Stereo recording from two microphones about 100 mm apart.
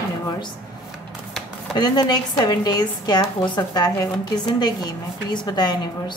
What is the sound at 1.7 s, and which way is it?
A woman's voice, 45° left (ahead or behind).